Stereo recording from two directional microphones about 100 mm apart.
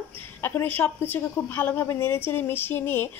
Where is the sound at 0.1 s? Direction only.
20° left (ahead or behind).